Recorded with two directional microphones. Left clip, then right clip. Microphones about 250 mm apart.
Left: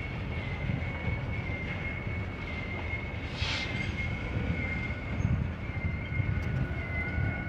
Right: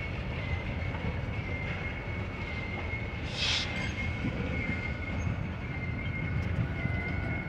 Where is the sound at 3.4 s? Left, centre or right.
Right.